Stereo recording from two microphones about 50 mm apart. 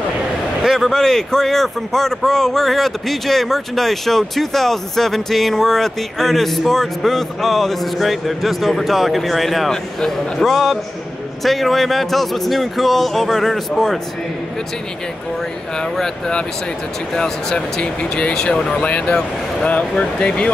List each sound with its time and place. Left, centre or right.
0.7 s speech: centre
16.0 s speech: centre
17.6 s speech: centre
19.9 s speech: centre